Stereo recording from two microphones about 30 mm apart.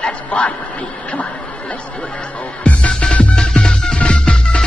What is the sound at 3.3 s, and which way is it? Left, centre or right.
Music, left.